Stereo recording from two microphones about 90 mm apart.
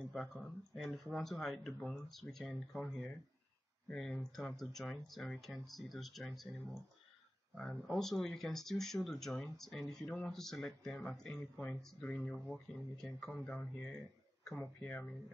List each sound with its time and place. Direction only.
0.1 s speech: centre (ahead or behind)
7.5 s speech: 5° left (ahead or behind)